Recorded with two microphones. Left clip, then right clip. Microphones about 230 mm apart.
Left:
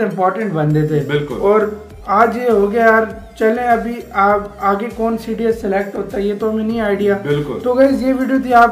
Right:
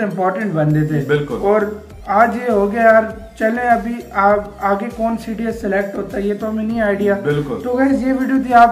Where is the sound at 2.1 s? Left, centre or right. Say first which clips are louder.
Left 1 dB; centre.